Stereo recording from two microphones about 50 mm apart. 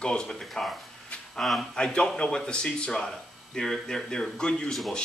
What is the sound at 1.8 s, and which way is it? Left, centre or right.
Speech, centre.